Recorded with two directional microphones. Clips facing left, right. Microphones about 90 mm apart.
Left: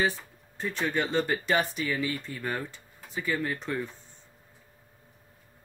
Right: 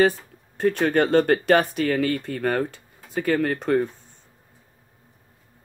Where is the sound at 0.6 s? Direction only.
60° right (ahead or behind).